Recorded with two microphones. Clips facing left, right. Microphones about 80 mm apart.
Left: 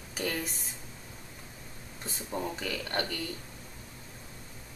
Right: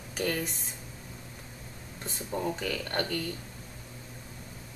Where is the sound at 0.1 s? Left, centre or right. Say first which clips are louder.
Right 3 dB; centre.